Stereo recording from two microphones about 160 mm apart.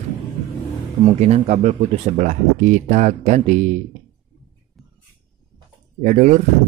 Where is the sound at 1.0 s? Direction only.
45° right (ahead or behind).